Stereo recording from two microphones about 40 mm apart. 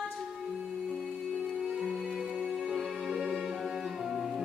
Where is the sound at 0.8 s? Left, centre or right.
Centre.